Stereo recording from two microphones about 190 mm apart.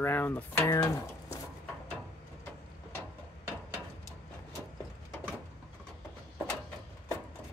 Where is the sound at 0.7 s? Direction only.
15° left (ahead or behind).